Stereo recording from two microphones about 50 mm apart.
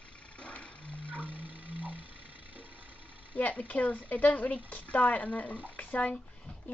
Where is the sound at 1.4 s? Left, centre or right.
Right.